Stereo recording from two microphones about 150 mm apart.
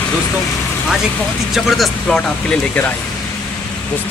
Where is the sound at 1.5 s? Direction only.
Centre (ahead or behind).